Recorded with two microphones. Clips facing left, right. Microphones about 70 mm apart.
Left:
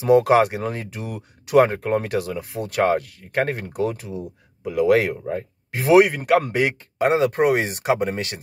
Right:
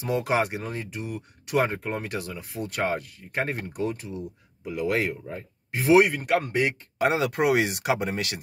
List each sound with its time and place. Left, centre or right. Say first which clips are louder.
0.0 s speech: left 10 dB; left
5.1 s speech: left 9 dB; left
5.8 s speech: left 4 dB; left
7.0 s speech: left 5 dB; left